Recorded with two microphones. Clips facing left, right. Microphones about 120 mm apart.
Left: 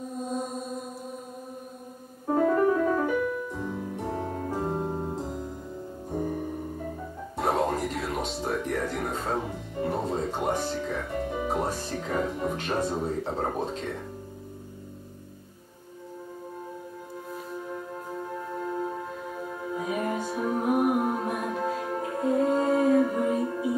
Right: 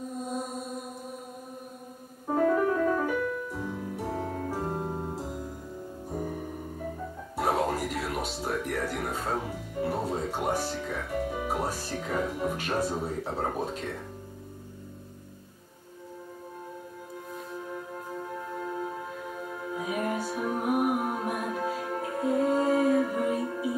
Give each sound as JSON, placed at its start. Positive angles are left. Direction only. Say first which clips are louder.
{"t": 0.3, "sound": "mantra", "louder": "left 4 dB", "side_deg": -5}
{"t": 2.2, "sound": "piano", "louder": "left 2 dB", "side_deg": 0}
{"t": 6.0, "sound": "music", "louder": "left 4 dB", "side_deg": 0}
{"t": 17.3, "sound": "music", "louder": "left 2 dB", "side_deg": 0}